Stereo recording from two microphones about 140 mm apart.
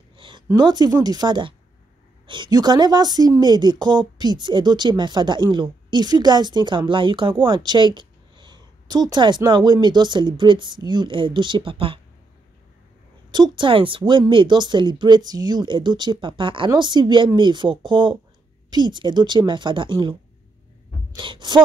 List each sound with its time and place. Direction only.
0.5 s speech: 30° right (ahead or behind)
13.3 s speech: 35° right (ahead or behind)